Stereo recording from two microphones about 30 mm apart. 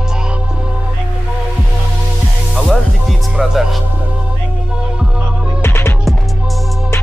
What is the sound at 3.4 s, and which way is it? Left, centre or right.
Music, centre.